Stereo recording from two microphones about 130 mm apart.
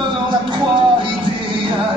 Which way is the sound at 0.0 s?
40° right (ahead or behind).